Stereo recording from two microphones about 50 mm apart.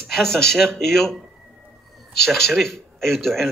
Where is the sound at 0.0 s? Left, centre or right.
Centre.